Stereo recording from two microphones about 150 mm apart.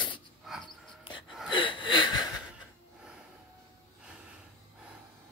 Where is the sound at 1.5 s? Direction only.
35° left (ahead or behind).